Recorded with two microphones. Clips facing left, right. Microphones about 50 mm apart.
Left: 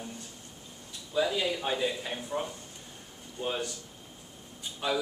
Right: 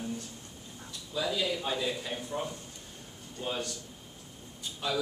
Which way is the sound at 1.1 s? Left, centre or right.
Centre.